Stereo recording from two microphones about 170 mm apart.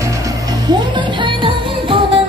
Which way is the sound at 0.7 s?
25° right (ahead or behind).